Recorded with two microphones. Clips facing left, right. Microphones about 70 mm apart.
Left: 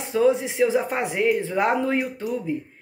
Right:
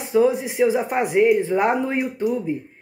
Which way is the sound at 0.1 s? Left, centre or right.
Centre.